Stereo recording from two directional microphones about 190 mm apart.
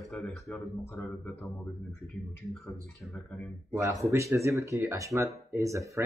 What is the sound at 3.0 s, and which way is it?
Speech, 5° left (ahead or behind).